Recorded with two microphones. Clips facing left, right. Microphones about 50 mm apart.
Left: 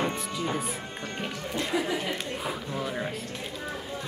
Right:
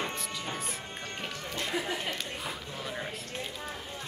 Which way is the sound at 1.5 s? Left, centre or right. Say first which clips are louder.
Left 5 dB; left.